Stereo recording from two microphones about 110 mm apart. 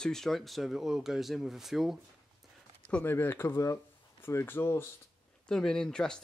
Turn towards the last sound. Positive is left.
turn(degrees=5)  # may be behind; listen again after turning